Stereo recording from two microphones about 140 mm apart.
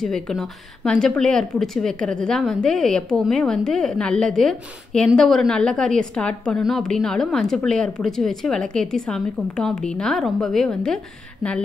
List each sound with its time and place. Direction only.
0.0 s a woman's voice: centre (ahead or behind)